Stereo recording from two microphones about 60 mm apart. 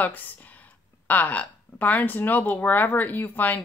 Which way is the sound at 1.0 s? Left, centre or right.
Left.